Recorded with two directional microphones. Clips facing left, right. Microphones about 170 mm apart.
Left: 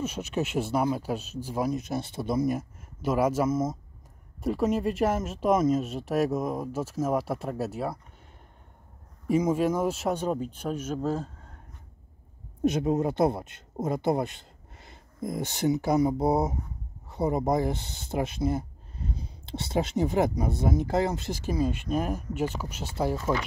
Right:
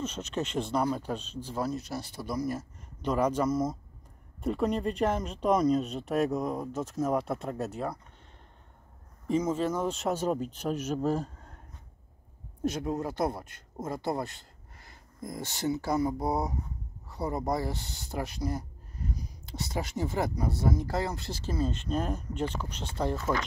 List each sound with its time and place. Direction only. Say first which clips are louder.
0.0 s speech: left 3 dB; 10° left (ahead or behind)
3.0 s speech: left 2 dB; 5° left (ahead or behind)
9.3 s speech: left 4 dB; 10° left (ahead or behind)
10.1 s speech: left 1 dB; 5° right (ahead or behind)
12.6 s speech: left 6 dB; 20° left (ahead or behind)